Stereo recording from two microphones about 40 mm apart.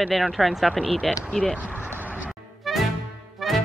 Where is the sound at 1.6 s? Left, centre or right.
Right.